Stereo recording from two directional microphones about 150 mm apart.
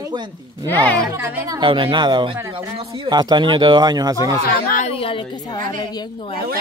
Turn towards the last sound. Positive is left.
turn(degrees=35)  # may be behind; listen again after turning